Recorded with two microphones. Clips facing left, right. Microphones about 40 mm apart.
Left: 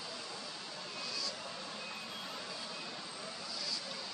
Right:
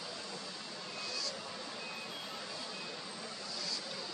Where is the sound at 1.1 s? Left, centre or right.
Centre.